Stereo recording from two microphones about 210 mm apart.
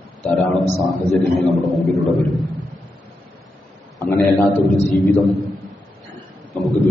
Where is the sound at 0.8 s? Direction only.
Centre (ahead or behind).